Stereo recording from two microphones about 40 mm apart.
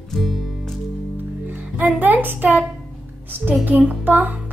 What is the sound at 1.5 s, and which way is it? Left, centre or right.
Music, right.